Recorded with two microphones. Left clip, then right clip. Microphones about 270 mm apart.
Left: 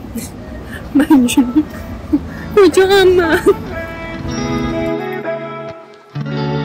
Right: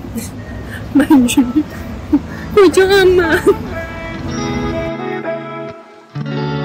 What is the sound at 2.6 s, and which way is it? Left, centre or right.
Speech, centre.